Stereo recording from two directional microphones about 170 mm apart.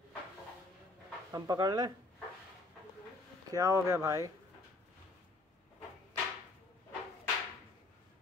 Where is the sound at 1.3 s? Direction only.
20° right (ahead or behind).